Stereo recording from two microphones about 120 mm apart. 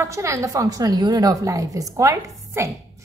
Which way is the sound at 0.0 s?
25° right (ahead or behind).